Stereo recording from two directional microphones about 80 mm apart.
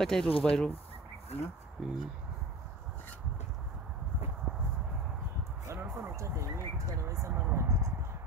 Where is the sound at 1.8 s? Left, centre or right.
Centre.